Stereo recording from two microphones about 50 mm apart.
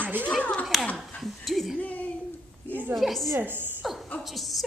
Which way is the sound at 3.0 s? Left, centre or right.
Centre.